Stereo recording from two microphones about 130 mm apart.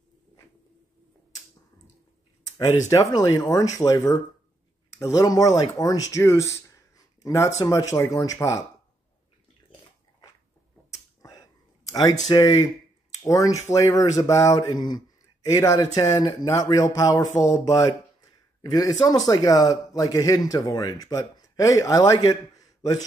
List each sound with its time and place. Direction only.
2.9 s speech: 25° left (ahead or behind)
10.9 s a sound: 25° left (ahead or behind)
11.9 s speech: 30° left (ahead or behind)